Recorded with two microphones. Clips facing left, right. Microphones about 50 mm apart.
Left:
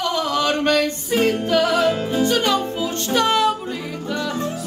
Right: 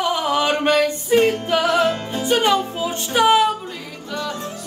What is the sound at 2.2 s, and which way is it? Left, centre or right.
Music, centre.